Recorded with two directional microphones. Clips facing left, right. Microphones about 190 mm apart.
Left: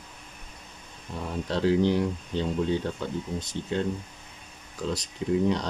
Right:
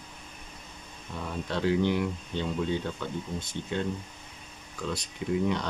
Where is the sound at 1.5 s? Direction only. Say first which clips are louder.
Left 3 dB; 35° left (ahead or behind).